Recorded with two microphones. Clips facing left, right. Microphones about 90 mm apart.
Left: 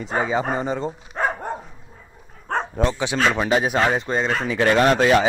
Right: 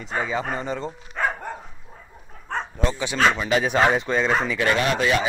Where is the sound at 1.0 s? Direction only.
25° left (ahead or behind).